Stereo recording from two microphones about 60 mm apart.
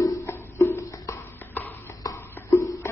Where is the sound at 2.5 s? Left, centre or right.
Left.